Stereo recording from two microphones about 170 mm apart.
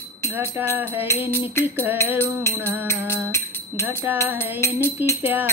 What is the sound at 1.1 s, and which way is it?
Music, 15° left (ahead or behind).